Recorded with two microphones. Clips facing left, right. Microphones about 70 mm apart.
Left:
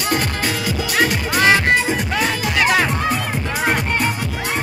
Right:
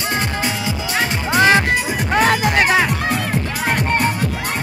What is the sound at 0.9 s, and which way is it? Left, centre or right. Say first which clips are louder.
Music: left 1 dB; right.